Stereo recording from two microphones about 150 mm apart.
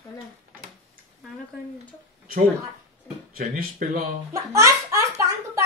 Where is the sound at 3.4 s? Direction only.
60° right (ahead or behind).